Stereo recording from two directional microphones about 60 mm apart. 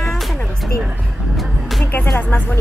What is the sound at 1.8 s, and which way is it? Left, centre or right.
Music, left.